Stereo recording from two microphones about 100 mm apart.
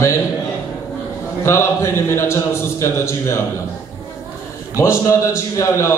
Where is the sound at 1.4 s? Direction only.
25° left (ahead or behind).